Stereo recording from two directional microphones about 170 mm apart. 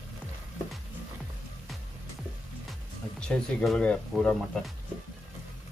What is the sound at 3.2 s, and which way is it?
Speech, 5° left (ahead or behind).